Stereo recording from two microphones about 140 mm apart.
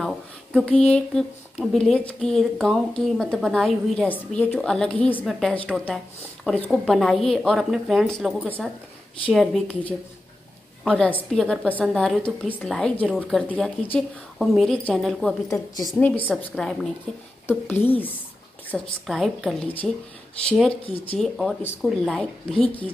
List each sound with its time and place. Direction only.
0.0 s a sound: 5° left (ahead or behind)
1.6 s a woman's voice: centre (ahead or behind)
8.5 s a woman's voice: 10° left (ahead or behind)
9.3 s speech: centre (ahead or behind)
10.9 s a woman's voice: 10° left (ahead or behind)
15.4 s a woman's voice: 25° left (ahead or behind)
16.0 s a woman's voice: 10° left (ahead or behind)
17.5 s a woman's voice: 15° left (ahead or behind)
18.7 s speech: centre (ahead or behind)
20.8 s speech: 40° left (ahead or behind)
21.2 s speech: centre (ahead or behind)